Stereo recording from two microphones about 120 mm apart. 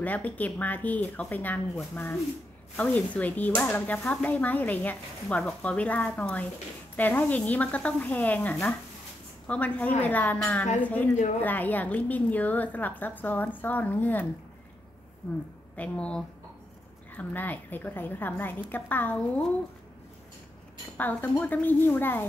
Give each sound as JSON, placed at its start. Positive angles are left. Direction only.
{"t": 0.0, "sound": "speech", "side_deg": 15}
{"t": 2.8, "sound": "speech", "side_deg": 10}
{"t": 15.7, "sound": "speech", "side_deg": 10}
{"t": 21.0, "sound": "speech", "side_deg": 15}